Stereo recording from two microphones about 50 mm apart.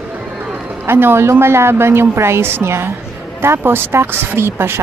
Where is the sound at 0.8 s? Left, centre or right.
Right.